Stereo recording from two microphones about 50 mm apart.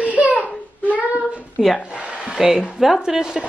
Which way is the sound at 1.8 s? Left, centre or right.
Centre.